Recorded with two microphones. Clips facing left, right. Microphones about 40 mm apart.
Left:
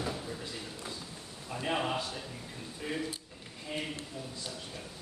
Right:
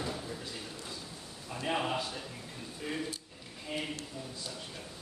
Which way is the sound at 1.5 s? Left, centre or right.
Centre.